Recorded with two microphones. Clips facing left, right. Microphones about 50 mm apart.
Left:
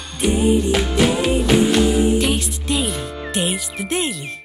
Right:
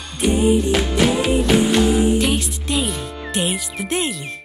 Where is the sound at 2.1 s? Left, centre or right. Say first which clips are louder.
Even; centre.